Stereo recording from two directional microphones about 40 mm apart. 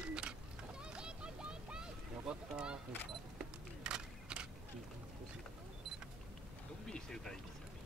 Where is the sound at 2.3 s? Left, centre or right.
Right.